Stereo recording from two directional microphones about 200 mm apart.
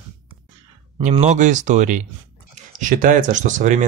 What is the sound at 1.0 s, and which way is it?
Speech, 35° right (ahead or behind).